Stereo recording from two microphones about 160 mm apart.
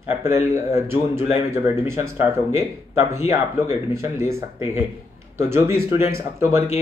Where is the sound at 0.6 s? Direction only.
15° right (ahead or behind).